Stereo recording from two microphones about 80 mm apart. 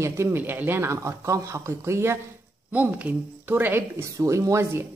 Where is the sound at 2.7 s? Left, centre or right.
Right.